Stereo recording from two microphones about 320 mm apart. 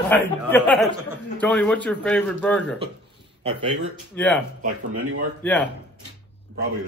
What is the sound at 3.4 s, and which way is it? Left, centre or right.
Speech, centre.